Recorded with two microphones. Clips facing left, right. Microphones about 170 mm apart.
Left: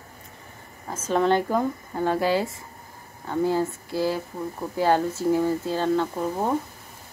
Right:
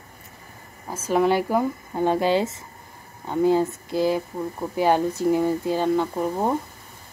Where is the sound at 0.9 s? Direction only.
10° right (ahead or behind).